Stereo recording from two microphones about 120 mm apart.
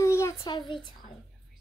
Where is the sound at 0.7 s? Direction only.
40° left (ahead or behind).